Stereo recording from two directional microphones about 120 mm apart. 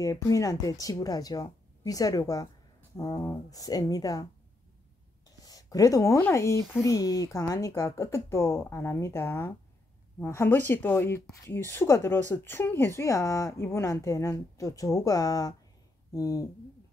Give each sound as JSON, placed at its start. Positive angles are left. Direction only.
{"t": 0.0, "sound": "speech", "side_deg": 30}
{"t": 5.4, "sound": "a sound", "side_deg": 30}
{"t": 6.2, "sound": "speech", "side_deg": 25}